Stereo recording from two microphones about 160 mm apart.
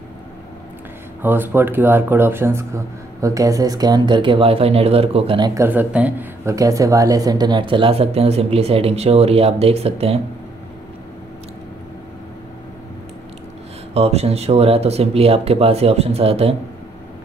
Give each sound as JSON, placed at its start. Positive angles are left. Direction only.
{"t": 1.2, "sound": "speech", "side_deg": -15}
{"t": 5.5, "sound": "speech", "side_deg": -15}
{"t": 13.9, "sound": "speech", "side_deg": -40}